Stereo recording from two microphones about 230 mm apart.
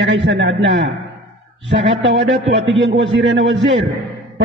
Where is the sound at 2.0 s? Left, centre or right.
Right.